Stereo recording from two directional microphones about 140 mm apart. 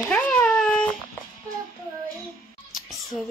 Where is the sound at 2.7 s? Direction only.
Centre (ahead or behind).